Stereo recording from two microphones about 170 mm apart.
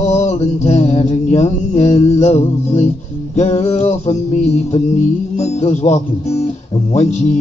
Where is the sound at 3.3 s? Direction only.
40° left (ahead or behind).